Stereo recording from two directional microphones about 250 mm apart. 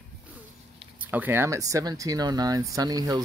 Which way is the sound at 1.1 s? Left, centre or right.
Centre.